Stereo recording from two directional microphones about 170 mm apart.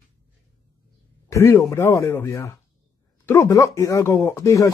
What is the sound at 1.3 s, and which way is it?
Speech, 15° left (ahead or behind).